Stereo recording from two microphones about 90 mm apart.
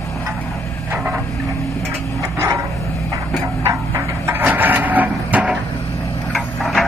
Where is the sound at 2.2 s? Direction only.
35° right (ahead or behind).